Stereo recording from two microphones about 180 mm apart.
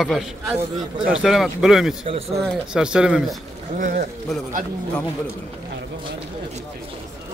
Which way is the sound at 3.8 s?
50° right (ahead or behind).